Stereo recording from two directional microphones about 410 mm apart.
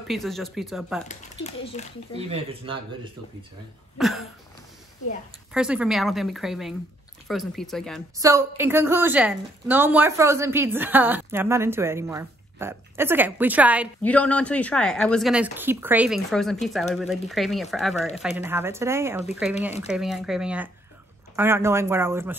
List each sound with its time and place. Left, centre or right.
0.1 s a woman's voice: centre
1.0 s speech: centre
2.1 s speech: centre
4.0 s a woman's voice: centre
5.5 s a woman's voice: centre